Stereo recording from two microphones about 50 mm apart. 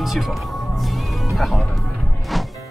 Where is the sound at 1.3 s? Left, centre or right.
Centre.